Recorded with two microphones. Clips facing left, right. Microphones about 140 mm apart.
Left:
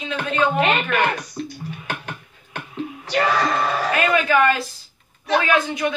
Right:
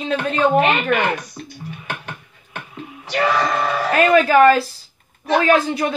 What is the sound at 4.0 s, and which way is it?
Speech, 40° right (ahead or behind).